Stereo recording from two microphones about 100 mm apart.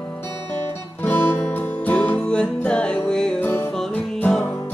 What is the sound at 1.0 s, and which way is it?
Music, 20° left (ahead or behind).